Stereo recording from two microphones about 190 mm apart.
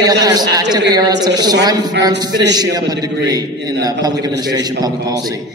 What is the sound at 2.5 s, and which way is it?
A man's voice, 20° right (ahead or behind).